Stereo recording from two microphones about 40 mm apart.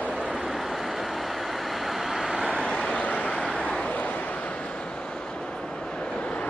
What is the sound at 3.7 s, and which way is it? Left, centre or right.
Bow-wow, left.